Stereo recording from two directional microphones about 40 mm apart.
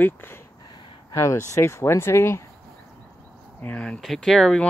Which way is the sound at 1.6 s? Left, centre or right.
Left.